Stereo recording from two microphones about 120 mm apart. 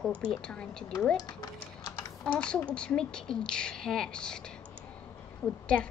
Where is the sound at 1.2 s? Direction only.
35° left (ahead or behind).